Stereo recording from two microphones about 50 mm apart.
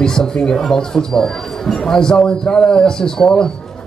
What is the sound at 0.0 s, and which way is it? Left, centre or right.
Speech, centre.